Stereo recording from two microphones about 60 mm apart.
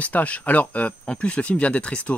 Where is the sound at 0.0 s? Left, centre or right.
Left.